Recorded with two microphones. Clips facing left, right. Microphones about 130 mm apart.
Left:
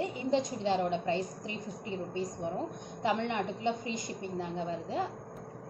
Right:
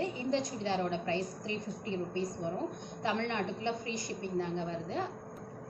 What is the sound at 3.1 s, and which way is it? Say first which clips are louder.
A woman's voice: left 2 dB; 15° left (ahead or behind).